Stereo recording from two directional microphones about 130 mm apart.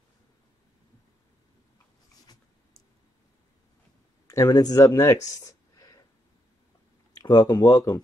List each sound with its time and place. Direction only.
4.3 s speech: 25° left (ahead or behind)
7.2 s speech: 30° left (ahead or behind)